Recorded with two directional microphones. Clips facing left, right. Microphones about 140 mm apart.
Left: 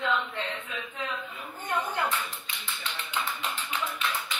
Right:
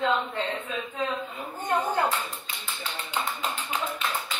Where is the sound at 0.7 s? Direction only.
25° right (ahead or behind).